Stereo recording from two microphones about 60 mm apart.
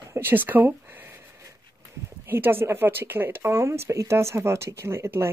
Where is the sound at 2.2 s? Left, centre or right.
Right.